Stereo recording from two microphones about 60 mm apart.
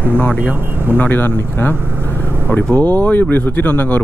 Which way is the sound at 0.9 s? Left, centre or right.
Left.